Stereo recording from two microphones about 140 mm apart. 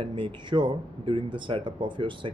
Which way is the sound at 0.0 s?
35° right (ahead or behind).